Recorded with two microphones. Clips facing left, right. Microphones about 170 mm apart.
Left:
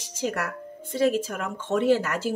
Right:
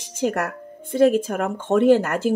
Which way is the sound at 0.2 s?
50° right (ahead or behind).